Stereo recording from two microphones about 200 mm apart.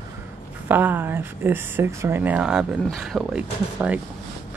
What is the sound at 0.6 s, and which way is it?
Speech, 10° right (ahead or behind).